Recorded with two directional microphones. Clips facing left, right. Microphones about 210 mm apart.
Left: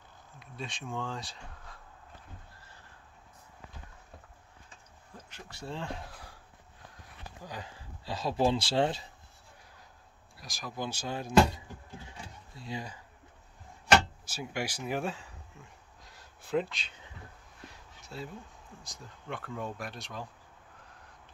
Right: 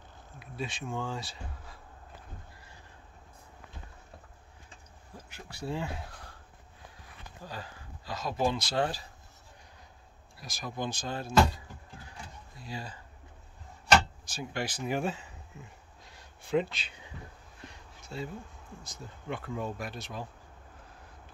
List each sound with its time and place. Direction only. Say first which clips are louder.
0.4 s speech: right 4 dB; 5° right (ahead or behind)
5.1 s speech: right 1 dB; 10° right (ahead or behind)
7.4 s speech: right 1 dB; 15° left (ahead or behind)
8.0 s speech: left 2 dB; 30° left (ahead or behind)
10.4 s speech: right 2 dB; centre (ahead or behind); by 13.0 s 15° left (ahead or behind)
14.2 s speech: even; 10° left (ahead or behind)
14.9 s speech: right 2 dB; centre (ahead or behind)
16.0 s a sound: right 1 dB; centre (ahead or behind)
16.7 s speech: right 1 dB; 5° right (ahead or behind)
17.6 s a sound: right 1 dB; centre (ahead or behind)
18.8 s speech: right 4 dB; centre (ahead or behind)